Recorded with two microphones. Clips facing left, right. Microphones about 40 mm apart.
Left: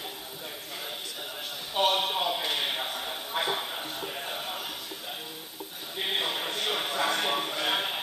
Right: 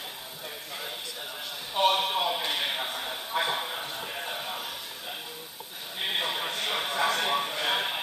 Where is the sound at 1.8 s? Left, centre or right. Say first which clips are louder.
Right 2 dB; right.